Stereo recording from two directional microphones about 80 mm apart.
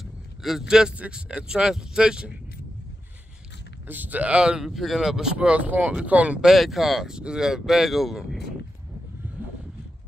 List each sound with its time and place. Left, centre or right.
0.0 s speech: centre
3.8 s speech: right
6.5 s speech: centre